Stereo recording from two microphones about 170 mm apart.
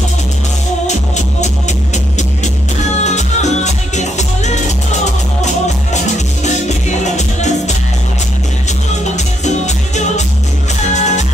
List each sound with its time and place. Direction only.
0.8 s music: 45° left (ahead or behind)
3.0 s music: 45° left (ahead or behind)
6.1 s music: 45° left (ahead or behind)
9.1 s music: 45° left (ahead or behind)